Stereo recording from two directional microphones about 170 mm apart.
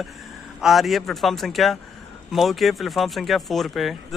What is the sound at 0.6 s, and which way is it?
Speech, centre (ahead or behind).